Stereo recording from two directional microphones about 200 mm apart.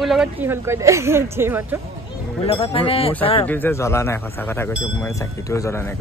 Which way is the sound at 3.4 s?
10° left (ahead or behind).